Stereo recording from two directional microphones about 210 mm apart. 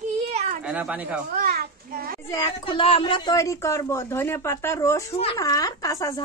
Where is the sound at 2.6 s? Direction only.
25° left (ahead or behind).